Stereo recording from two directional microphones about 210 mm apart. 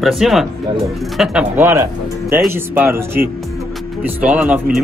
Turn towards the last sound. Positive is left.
turn(degrees=-5)  # may be behind; listen again after turning